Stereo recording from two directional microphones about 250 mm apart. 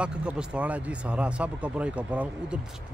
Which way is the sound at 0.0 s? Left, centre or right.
Centre.